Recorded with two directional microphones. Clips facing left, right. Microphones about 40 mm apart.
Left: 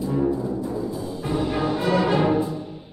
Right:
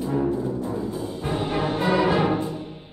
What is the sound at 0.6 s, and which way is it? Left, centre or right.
Music, right.